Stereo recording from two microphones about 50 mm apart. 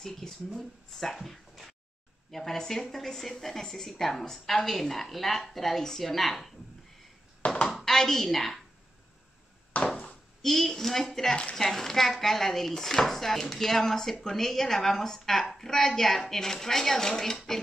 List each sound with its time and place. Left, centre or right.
0.0 s speech: centre
2.3 s chopping: centre
7.6 s a woman's voice: centre
9.7 s a sound: left
10.4 s chopping: centre
15.5 s speech: centre